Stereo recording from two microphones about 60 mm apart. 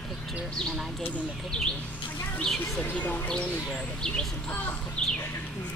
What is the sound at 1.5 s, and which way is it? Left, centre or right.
Speech, centre.